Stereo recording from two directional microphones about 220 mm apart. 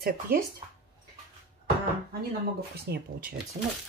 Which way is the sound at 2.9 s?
40° right (ahead or behind).